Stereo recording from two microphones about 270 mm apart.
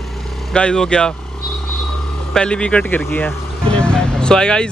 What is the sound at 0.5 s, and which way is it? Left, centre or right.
Speech, centre.